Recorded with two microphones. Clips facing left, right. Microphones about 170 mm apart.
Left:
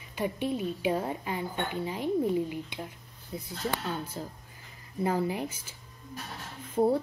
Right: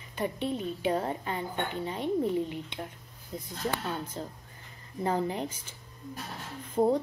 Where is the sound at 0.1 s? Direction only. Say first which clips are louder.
Left 1 dB; 10° left (ahead or behind).